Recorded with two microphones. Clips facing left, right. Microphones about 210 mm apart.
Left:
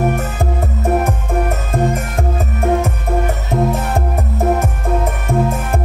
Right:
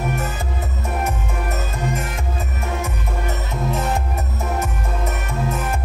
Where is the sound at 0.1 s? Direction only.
50° left (ahead or behind).